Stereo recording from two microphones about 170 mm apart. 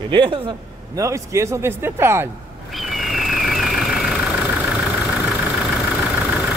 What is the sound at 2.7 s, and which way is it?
Vehicle, centre (ahead or behind).